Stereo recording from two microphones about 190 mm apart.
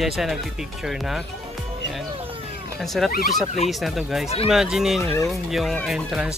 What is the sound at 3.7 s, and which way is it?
Speech, centre (ahead or behind).